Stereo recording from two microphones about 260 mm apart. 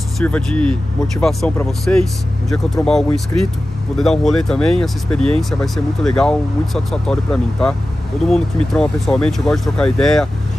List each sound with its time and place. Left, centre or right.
0.2 s speech: centre